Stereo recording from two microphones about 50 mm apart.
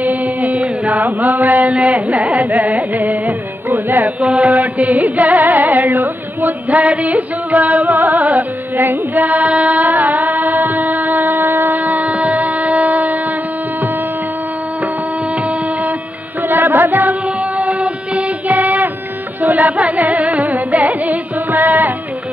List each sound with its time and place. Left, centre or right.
0.2 s mantra: right
4.2 s music: right
6.8 s music: right
12.8 s a sound: right
16.4 s music: right
17.1 s child singing: right
19.4 s music: right